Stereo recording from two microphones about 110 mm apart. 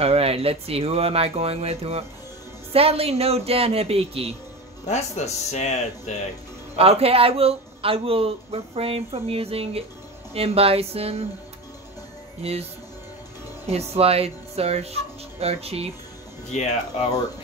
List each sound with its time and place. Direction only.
0.0 s speech: 65° right (ahead or behind)
4.8 s speech: 90° left
6.8 s speech: 65° right (ahead or behind)
12.4 s speech: 70° right (ahead or behind)
13.7 s speech: 70° right (ahead or behind)
16.5 s speech: 90° left